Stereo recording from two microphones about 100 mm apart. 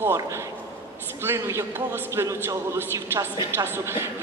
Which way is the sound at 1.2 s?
30° right (ahead or behind).